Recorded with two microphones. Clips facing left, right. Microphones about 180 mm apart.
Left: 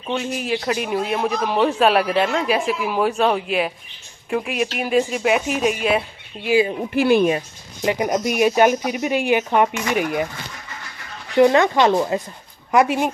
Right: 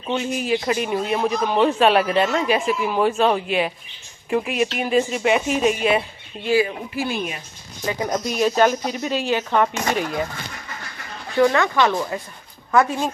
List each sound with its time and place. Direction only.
0.0 s a man's voice: centre (ahead or behind)
6.9 s speech: 60° left (ahead or behind)
7.8 s speech: 15° left (ahead or behind)
11.3 s speech: 20° left (ahead or behind)